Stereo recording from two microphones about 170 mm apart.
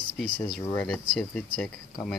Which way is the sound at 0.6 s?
15° left (ahead or behind).